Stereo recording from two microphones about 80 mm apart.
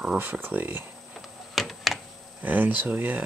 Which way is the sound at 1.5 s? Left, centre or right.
Centre.